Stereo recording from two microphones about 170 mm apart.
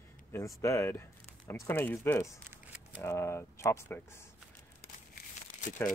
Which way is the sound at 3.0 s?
15° left (ahead or behind).